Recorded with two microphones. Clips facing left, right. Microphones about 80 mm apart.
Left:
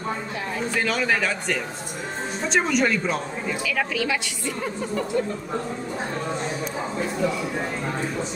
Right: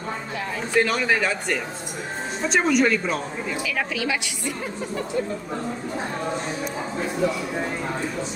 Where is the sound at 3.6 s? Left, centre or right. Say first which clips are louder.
Left 2 dB; right.